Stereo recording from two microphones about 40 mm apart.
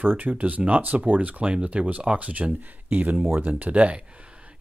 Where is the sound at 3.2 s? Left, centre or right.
Right.